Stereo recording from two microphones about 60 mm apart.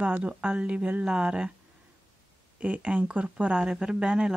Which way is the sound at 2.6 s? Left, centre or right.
Right.